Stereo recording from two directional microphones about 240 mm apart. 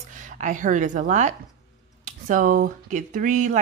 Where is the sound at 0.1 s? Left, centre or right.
Right.